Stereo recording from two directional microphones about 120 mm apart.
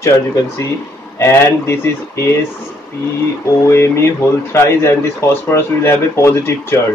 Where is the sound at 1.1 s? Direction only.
20° left (ahead or behind).